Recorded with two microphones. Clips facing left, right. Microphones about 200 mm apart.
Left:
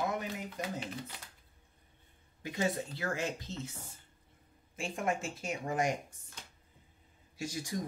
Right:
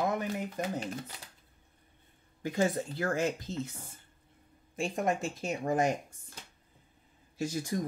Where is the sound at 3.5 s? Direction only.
10° right (ahead or behind).